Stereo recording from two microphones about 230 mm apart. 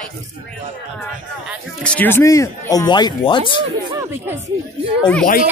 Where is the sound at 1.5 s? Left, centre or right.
Centre.